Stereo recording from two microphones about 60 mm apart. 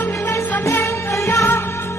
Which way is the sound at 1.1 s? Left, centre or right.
Left.